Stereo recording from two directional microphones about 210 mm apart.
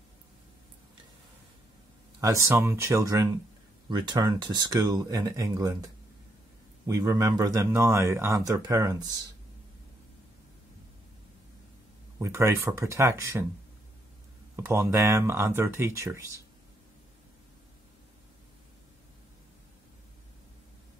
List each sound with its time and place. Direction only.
2.1 s a man's voice: 15° right (ahead or behind)
6.9 s a man's voice: 15° right (ahead or behind)
12.2 s a man's voice: 15° right (ahead or behind)
14.5 s a man's voice: 15° right (ahead or behind)